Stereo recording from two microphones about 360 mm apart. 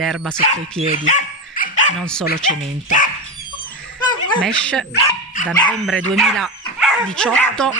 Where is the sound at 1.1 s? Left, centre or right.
Left.